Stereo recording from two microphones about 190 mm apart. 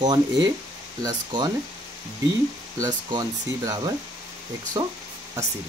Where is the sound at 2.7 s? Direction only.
20° right (ahead or behind).